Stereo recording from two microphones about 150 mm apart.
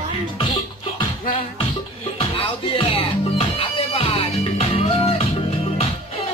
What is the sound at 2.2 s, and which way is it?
Music, 35° left (ahead or behind).